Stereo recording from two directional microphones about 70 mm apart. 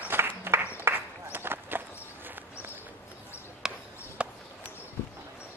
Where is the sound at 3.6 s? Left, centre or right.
Centre.